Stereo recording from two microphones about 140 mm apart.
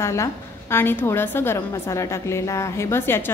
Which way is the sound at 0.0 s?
20° left (ahead or behind).